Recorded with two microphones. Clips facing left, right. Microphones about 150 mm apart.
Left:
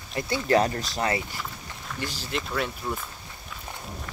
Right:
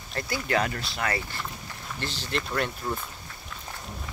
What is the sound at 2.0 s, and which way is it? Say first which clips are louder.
Speech: even; 10° left (ahead or behind).